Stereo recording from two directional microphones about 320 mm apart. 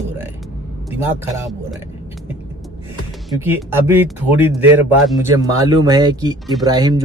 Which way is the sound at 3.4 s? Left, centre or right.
Centre.